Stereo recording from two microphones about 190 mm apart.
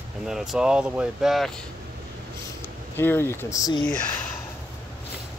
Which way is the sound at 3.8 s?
5° left (ahead or behind).